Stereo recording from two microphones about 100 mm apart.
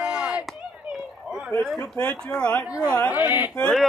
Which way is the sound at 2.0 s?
10° left (ahead or behind).